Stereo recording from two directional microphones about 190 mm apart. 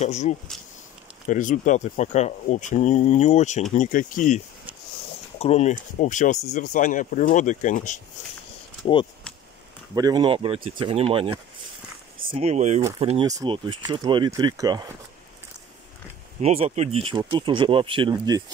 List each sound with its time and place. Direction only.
0.0 s speech: 35° left (ahead or behind)
5.4 s speech: 35° left (ahead or behind)
9.9 s speech: 20° right (ahead or behind)
16.3 s speech: 35° right (ahead or behind)